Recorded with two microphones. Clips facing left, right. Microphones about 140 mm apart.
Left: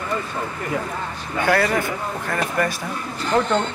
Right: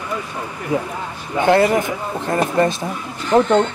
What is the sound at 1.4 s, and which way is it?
Speech, 20° right (ahead or behind).